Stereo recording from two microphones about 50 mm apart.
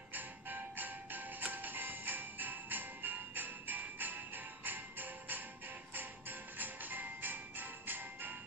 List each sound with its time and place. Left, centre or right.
0.1 s music: right